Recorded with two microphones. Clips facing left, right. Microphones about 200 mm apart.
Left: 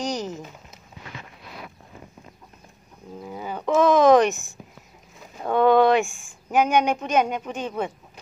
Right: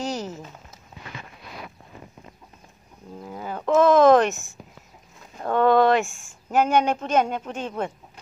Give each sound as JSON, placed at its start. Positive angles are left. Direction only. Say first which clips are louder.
{"t": 0.0, "sound": "speech", "louder": "left 1 dB", "side_deg": -5}
{"t": 3.2, "sound": "a sound", "louder": "left 1 dB", "side_deg": 5}
{"t": 5.4, "sound": "speech", "louder": "left 1 dB", "side_deg": 10}